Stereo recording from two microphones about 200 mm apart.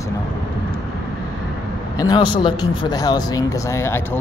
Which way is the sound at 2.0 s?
20° left (ahead or behind).